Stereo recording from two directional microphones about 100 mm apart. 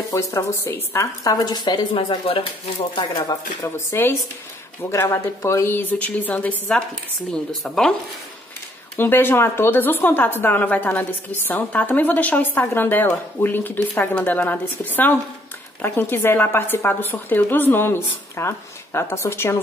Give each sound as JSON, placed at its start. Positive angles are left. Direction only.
{"t": 0.1, "sound": "a woman's voice", "side_deg": 30}
{"t": 1.2, "sound": "speech", "side_deg": 45}
{"t": 2.0, "sound": "speech", "side_deg": 65}
{"t": 3.6, "sound": "a woman's voice", "side_deg": 25}
{"t": 7.6, "sound": "speech", "side_deg": 5}
{"t": 8.9, "sound": "a woman's voice", "side_deg": 20}